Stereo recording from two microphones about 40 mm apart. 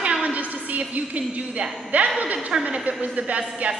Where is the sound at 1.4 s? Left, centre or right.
Right.